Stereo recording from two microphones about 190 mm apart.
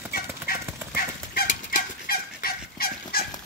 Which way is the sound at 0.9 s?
50° left (ahead or behind).